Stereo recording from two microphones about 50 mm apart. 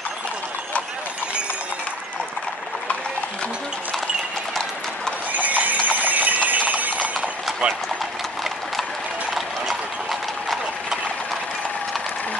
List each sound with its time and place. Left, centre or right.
5.3 s clip-clop: right
7.6 s speech: right